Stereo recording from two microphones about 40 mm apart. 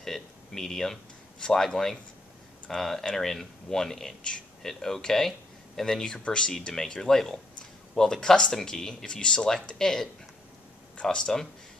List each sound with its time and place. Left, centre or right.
0.0 s speech: centre
6.2 s speech: left
6.9 s speech: centre